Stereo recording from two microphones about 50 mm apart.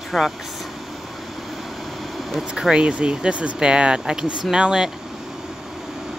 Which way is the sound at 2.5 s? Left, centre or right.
Centre.